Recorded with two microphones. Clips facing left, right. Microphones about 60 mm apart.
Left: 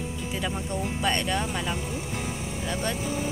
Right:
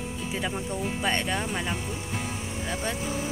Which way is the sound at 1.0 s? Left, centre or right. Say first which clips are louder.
Left 2 dB; right.